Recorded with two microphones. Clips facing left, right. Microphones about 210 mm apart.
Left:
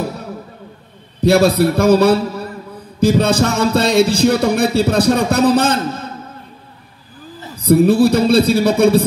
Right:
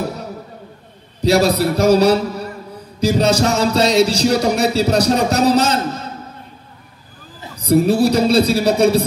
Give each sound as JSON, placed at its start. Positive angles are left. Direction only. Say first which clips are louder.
{"t": 1.2, "sound": "speech", "louder": "left 3 dB", "side_deg": 55}
{"t": 7.6, "sound": "speech", "louder": "left 3 dB", "side_deg": 55}